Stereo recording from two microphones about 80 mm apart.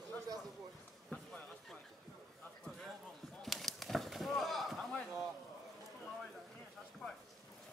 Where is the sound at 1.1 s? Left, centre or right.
Left.